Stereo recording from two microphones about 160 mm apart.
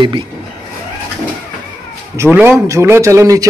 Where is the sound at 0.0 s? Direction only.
30° right (ahead or behind).